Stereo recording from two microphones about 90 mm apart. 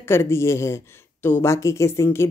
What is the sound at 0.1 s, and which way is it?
Speech, 30° left (ahead or behind).